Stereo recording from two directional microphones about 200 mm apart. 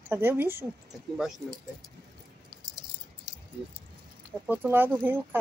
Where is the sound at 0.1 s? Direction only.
10° right (ahead or behind).